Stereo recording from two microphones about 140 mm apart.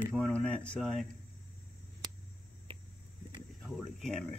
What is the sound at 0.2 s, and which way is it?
Speech, 5° left (ahead or behind).